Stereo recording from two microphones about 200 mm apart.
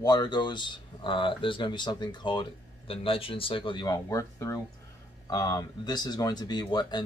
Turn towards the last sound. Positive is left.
turn(degrees=20)  # may be behind; listen again after turning